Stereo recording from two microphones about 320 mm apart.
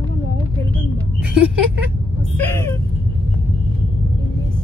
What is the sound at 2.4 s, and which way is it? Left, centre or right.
Speech, centre.